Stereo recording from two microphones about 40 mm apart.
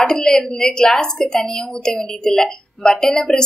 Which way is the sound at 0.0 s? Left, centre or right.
Centre.